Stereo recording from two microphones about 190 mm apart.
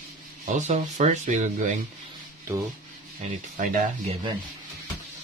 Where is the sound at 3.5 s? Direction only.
45° right (ahead or behind).